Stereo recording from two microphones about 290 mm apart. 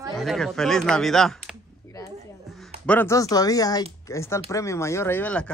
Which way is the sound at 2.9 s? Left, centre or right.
Centre.